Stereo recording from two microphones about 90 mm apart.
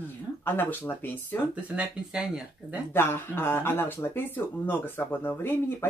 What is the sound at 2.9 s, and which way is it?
Speech, 25° left (ahead or behind).